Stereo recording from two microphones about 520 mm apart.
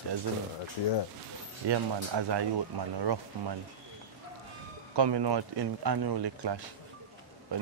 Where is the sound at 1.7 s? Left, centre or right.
Right.